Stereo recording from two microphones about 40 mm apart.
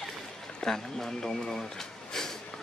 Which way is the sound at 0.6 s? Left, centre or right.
Centre.